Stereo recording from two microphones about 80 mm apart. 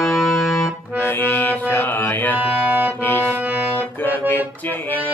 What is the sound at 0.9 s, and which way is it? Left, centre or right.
Music, left.